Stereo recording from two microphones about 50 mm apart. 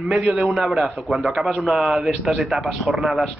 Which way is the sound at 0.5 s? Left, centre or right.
Centre.